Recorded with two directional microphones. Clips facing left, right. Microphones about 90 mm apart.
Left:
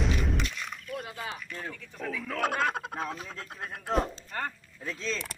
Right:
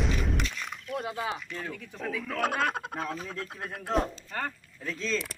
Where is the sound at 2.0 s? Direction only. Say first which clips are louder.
Even; centre (ahead or behind).